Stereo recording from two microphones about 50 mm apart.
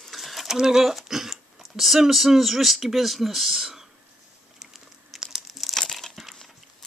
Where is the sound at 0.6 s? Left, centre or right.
Centre.